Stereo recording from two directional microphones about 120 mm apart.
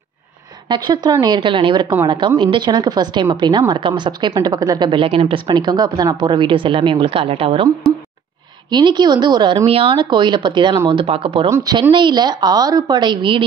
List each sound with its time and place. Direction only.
0.7 s a woman's voice: 40° right (ahead or behind)
5.5 s a woman's voice: 35° right (ahead or behind)
8.6 s a woman's voice: 40° right (ahead or behind)
9.7 s a woman's voice: 50° right (ahead or behind)
11.5 s a woman's voice: 30° right (ahead or behind)